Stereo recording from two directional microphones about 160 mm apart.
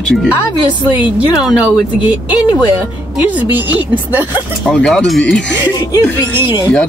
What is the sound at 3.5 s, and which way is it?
Speech, 10° right (ahead or behind).